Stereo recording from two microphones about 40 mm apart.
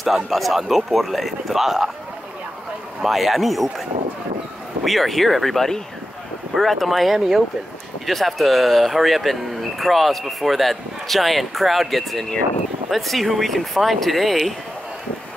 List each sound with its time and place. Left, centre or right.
0.0 s speech: centre
3.0 s speech: centre
4.8 s speech: centre